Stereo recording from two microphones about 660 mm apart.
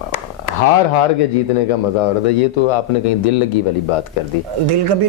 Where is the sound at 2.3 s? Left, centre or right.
Left.